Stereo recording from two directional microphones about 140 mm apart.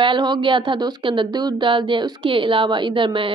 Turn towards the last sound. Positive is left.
turn(degrees=-35)  # may be behind; listen again after turning